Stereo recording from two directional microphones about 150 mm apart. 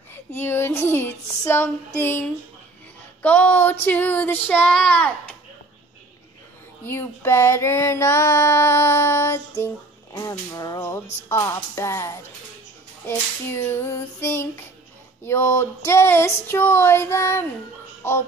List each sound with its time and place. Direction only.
0.1 s female singing: 15° left (ahead or behind)
3.2 s child singing: 10° left (ahead or behind)
6.9 s child singing: 15° left (ahead or behind)
10.1 s music: 20° left (ahead or behind)
13.0 s child singing: 15° left (ahead or behind)